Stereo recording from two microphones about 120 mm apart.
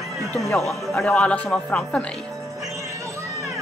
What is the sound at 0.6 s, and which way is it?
Speech, centre (ahead or behind).